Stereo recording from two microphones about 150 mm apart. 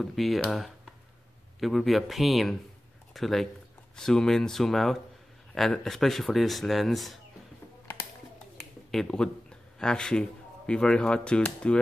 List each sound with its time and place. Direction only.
0.0 s speech: centre (ahead or behind)
8.9 s speech: 5° left (ahead or behind)